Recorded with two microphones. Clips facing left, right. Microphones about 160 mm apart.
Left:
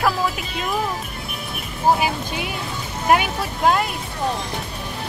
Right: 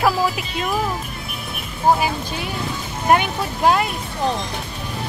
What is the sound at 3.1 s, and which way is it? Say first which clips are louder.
Speech: right 1 dB; centre (ahead or behind).